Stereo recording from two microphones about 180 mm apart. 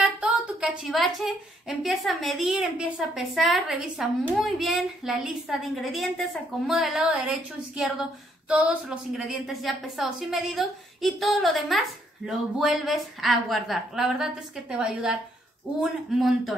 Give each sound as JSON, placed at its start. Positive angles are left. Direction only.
{"t": 0.0, "sound": "a woman's voice", "side_deg": -5}